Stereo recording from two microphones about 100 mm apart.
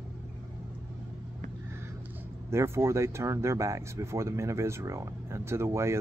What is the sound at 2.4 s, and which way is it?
Speech, 25° right (ahead or behind).